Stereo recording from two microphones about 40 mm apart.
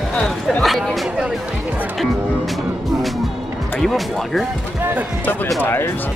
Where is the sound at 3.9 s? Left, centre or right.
Centre.